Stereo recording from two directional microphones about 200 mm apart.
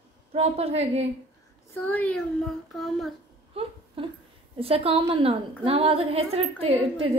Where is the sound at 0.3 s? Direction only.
30° right (ahead or behind).